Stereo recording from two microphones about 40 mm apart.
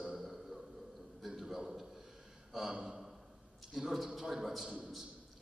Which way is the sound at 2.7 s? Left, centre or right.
Centre.